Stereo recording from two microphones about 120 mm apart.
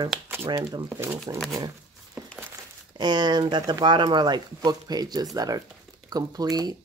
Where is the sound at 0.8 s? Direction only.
15° right (ahead or behind).